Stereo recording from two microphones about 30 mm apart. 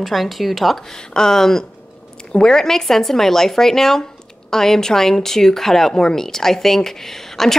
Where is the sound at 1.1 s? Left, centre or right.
Centre.